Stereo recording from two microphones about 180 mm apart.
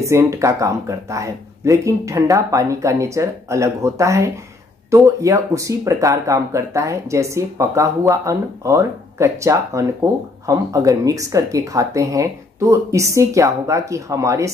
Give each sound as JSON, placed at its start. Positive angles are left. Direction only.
{"t": 0.0, "sound": "speech", "side_deg": -15}